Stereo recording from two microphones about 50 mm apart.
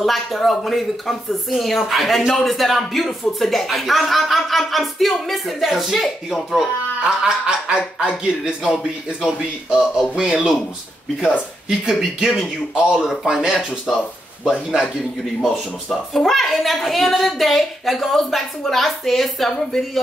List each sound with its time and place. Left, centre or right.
0.0 s speech: centre
7.2 s speech: centre
11.8 s speech: centre
12.7 s speech: centre
15.4 s speech: centre